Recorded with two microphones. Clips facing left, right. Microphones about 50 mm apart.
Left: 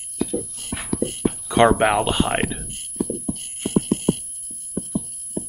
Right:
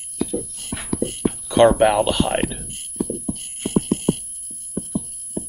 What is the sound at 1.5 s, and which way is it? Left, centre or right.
Speech, left.